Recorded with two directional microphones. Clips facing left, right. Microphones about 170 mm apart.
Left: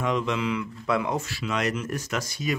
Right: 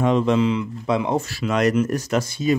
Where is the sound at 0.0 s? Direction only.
35° right (ahead or behind).